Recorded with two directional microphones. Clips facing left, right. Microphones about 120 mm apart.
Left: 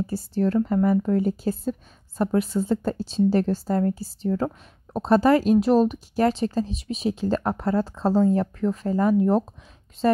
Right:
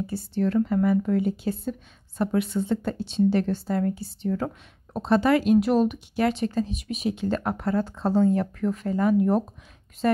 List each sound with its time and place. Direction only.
0.0 s a woman's voice: 40° left (ahead or behind)